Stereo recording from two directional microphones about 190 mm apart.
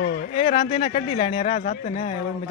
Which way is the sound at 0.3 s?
35° left (ahead or behind).